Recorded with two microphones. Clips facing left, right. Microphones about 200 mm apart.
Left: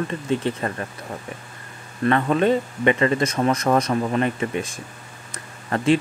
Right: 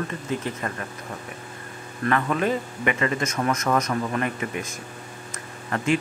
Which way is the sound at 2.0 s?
30° left (ahead or behind).